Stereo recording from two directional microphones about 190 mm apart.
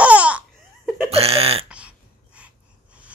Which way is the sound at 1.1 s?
30° right (ahead or behind).